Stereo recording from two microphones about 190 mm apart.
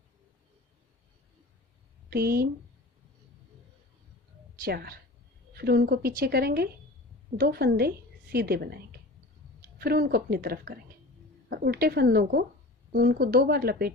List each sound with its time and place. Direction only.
2.0 s a woman's voice: 55° right (ahead or behind)
4.6 s a woman's voice: 55° right (ahead or behind)